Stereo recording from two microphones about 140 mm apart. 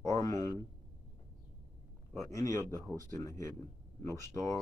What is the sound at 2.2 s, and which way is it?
Speech, 25° left (ahead or behind).